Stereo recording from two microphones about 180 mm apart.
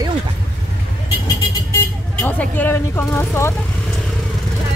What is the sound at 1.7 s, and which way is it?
Speech, 10° left (ahead or behind).